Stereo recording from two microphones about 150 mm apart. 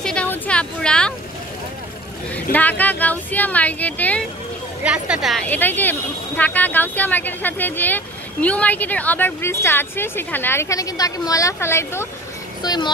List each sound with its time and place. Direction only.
0.0 s a sound: 5° left (ahead or behind)
2.5 s speech: 10° left (ahead or behind)
4.8 s a woman's voice: 5° right (ahead or behind)
5.5 s speech: 10° left (ahead or behind)
12.6 s speech: 25° left (ahead or behind)